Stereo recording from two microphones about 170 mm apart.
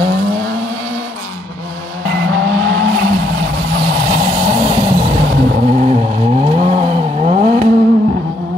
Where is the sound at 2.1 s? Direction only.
90° right.